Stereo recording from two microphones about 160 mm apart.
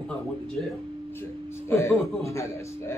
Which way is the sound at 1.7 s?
20° left (ahead or behind).